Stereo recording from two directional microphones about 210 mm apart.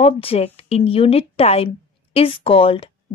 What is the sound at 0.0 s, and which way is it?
A woman's voice, 25° left (ahead or behind).